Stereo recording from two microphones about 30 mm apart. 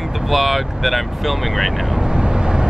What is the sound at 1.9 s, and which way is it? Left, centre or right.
Vehicle, right.